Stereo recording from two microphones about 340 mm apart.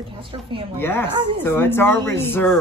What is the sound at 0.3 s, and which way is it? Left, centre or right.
Speech, centre.